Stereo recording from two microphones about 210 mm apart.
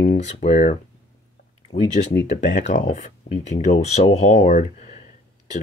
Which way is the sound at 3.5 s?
30° left (ahead or behind).